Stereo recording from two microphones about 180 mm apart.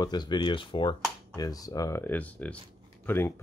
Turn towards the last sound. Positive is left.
turn(degrees=10)  # may be behind; listen again after turning